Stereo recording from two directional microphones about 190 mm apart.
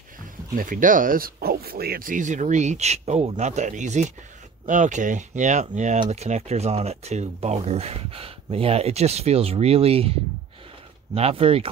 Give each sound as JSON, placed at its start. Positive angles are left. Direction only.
{"t": 0.6, "sound": "speech", "side_deg": -45}
{"t": 11.1, "sound": "speech", "side_deg": -30}